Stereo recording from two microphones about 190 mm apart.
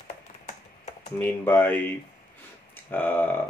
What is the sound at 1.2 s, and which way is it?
Speech, 10° left (ahead or behind).